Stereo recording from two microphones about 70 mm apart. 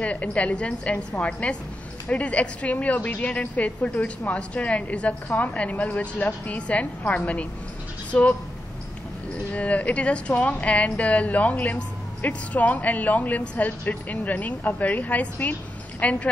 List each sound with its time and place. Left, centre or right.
0.0 s a woman's voice: centre
9.5 s a woman's voice: centre